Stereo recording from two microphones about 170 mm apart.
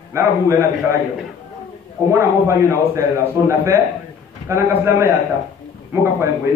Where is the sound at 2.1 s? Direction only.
15° right (ahead or behind).